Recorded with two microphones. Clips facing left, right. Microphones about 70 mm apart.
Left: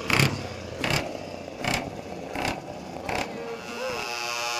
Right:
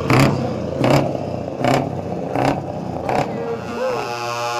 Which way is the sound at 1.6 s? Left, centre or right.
Right.